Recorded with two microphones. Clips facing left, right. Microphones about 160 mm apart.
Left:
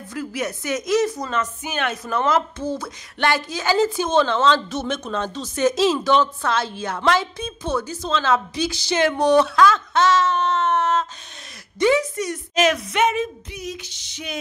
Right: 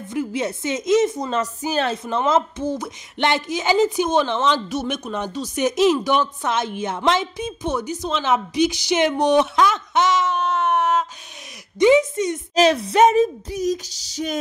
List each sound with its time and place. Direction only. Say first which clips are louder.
0.1 s a woman's voice: right 3 dB; 25° right (ahead or behind); by 14.4 s 40° right (ahead or behind)